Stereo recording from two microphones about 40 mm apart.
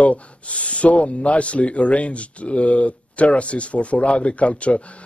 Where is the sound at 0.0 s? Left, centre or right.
Left.